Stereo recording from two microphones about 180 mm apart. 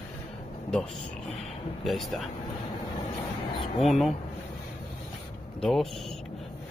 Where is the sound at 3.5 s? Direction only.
30° left (ahead or behind).